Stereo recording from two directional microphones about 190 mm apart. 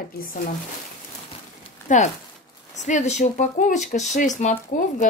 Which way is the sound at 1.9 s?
40° left (ahead or behind).